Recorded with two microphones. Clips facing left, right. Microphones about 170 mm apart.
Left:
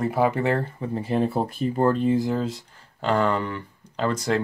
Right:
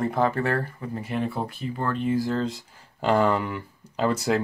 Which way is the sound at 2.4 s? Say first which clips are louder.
Even; centre (ahead or behind).